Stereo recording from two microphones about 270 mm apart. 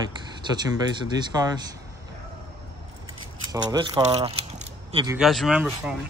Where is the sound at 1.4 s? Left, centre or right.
Centre.